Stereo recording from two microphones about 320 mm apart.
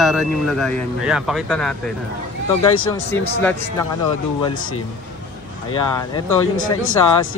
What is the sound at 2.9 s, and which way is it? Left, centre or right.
Speech, centre.